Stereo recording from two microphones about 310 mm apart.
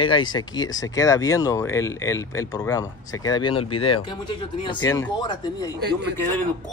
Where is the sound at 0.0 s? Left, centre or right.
Centre.